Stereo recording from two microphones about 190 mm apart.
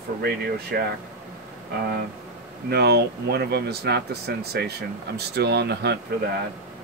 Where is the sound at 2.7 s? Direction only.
60° right (ahead or behind).